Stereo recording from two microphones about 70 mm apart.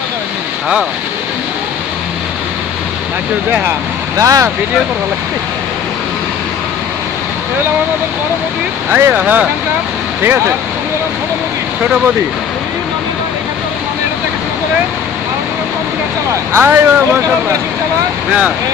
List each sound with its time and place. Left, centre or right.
4.2 s speech: right
8.9 s speech: right
10.2 s speech: right
16.5 s speech: right